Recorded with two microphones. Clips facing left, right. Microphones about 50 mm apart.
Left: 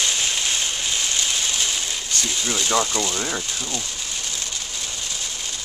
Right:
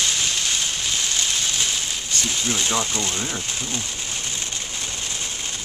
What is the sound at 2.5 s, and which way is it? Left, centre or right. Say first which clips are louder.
Speech: left 4 dB; centre.